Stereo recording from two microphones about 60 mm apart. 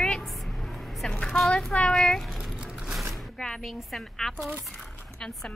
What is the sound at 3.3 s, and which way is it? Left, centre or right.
Speech, centre.